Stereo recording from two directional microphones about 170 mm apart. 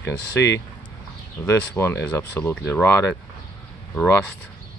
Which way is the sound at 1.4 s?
15° left (ahead or behind).